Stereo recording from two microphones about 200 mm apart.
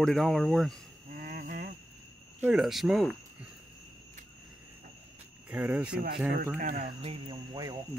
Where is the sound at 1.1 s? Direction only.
45° right (ahead or behind).